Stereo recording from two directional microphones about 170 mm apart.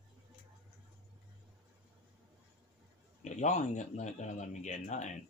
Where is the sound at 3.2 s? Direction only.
45° left (ahead or behind).